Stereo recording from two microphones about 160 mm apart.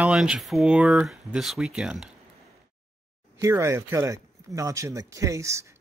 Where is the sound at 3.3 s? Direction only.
20° right (ahead or behind).